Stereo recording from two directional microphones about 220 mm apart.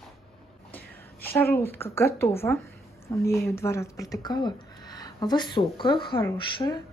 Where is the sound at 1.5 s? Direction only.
10° left (ahead or behind).